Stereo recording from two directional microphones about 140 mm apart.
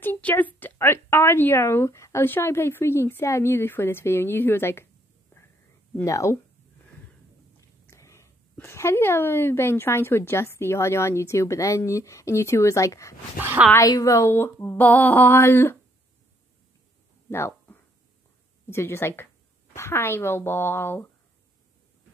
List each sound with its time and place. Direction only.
0.0 s a woman's voice: 15° left (ahead or behind)
6.0 s speech: 25° left (ahead or behind)
7.9 s speech: 20° left (ahead or behind)
13.4 s a woman's voice: 15° right (ahead or behind)
13.7 s speech: 25° left (ahead or behind)
17.3 s a sound: 15° left (ahead or behind)
18.7 s speech: 20° left (ahead or behind)